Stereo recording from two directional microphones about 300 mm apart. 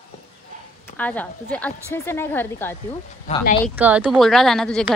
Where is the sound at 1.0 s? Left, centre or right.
Centre.